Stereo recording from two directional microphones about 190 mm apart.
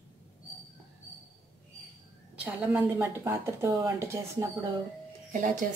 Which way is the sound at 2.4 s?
10° right (ahead or behind).